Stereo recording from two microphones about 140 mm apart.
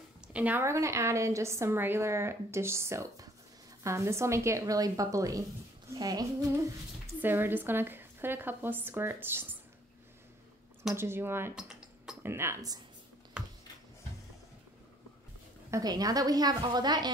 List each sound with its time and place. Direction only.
0.3 s a woman's voice: 10° right (ahead or behind); by 6.7 s 25° right (ahead or behind)
7.2 s a woman's voice: 15° right (ahead or behind)
11.0 s a woman's voice: 15° right (ahead or behind)
11.5 s a sound: 5° right (ahead or behind)
12.2 s a woman's voice: 20° right (ahead or behind)
15.7 s a woman's voice: 25° right (ahead or behind)